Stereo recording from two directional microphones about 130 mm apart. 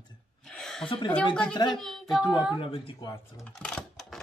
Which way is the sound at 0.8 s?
40° left (ahead or behind).